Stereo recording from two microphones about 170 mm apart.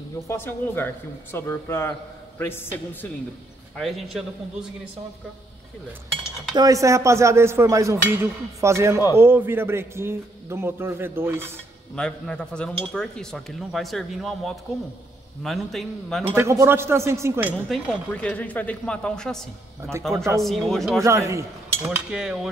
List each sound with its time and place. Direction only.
0.3 s a man's voice: 10° left (ahead or behind)
3.7 s speech: centre (ahead or behind)
6.5 s speech: 20° right (ahead or behind)
11.9 s speech: 5° left (ahead or behind)
16.3 s speech: 15° right (ahead or behind)
17.6 s speech: centre (ahead or behind)
21.0 s speech: 15° right (ahead or behind)